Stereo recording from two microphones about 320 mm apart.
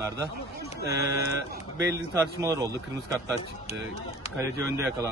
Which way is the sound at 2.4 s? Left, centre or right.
Centre.